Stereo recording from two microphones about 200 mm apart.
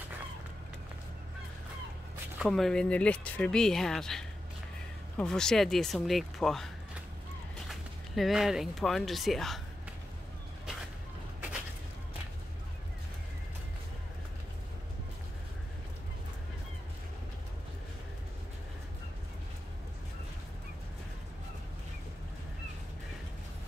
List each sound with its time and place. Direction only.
2.3 s speech: centre (ahead or behind)